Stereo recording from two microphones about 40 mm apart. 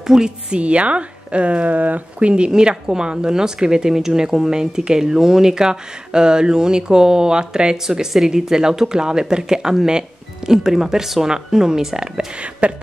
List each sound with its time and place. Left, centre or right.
0.0 s speech: centre
0.6 s speech: right
2.2 s speech: right
12.4 s speech: right